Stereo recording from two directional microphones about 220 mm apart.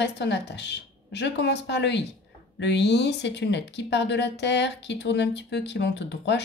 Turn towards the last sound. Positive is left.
turn(degrees=55)  # may be behind; listen again after turning